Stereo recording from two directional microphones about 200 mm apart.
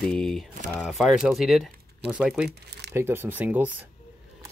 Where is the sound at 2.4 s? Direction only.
55° right (ahead or behind).